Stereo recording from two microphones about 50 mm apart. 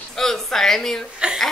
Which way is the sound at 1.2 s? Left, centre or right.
Centre.